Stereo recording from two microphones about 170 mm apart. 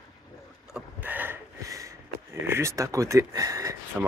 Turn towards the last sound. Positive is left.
turn(degrees=-20)  # may be behind; listen again after turning